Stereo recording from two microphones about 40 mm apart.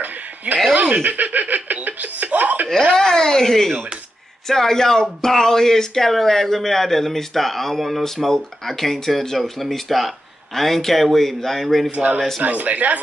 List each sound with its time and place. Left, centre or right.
0.0 s a sound: right
0.7 s snicker: right
2.9 s speech: centre
11.9 s speech: right